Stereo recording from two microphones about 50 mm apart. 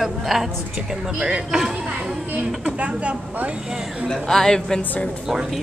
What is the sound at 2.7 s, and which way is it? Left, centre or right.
Speech, right.